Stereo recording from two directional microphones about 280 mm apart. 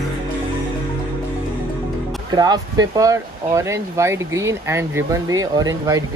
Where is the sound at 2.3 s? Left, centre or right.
Centre.